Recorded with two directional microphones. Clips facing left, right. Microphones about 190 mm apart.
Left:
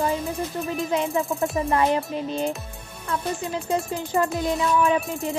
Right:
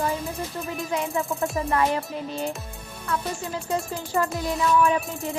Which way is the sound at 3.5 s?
20° left (ahead or behind).